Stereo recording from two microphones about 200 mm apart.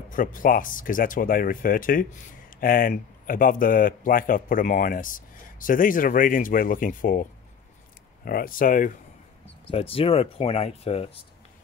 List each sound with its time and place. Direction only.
0.1 s speech: 40° left (ahead or behind)
8.3 s speech: 45° left (ahead or behind)
9.7 s speech: 30° left (ahead or behind)